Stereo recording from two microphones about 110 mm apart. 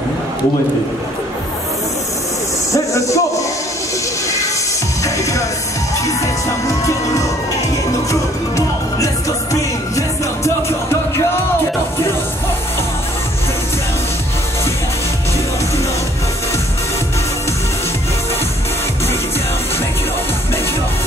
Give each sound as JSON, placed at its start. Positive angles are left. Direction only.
{"t": 2.7, "sound": "a sound", "side_deg": 30}
{"t": 5.0, "sound": "music", "side_deg": 30}
{"t": 6.7, "sound": "music", "side_deg": 30}